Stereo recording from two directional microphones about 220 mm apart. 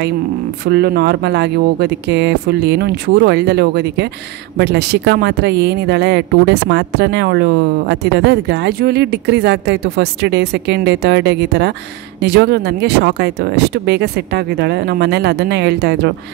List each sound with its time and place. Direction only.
0.7 s speech: 45° right (ahead or behind)